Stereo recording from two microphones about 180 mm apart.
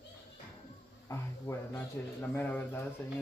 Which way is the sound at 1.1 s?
15° left (ahead or behind).